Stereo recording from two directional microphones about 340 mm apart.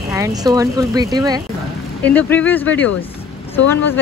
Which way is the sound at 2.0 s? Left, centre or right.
Centre.